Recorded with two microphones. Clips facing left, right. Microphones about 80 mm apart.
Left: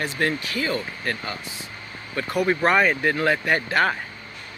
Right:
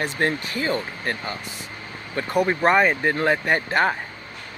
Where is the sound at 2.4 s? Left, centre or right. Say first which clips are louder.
Even; centre.